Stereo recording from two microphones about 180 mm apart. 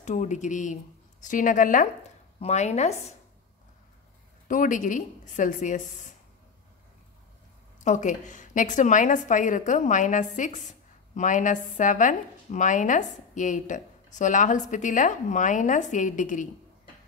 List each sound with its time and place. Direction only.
0.0 s a woman's voice: 40° left (ahead or behind)
4.5 s a woman's voice: 45° left (ahead or behind)
7.8 s a woman's voice: 45° left (ahead or behind)